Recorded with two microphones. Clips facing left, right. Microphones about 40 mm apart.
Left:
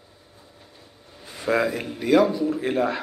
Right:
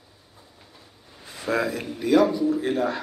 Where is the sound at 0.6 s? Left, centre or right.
Centre.